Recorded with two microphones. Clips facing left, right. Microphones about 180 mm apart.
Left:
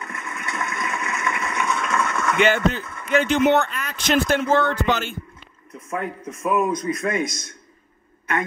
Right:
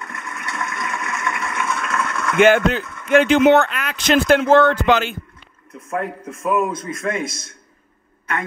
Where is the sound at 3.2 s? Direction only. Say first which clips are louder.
Right 4 dB; 90° right.